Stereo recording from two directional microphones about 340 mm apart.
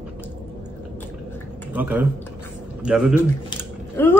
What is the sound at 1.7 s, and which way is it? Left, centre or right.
A man's voice, centre.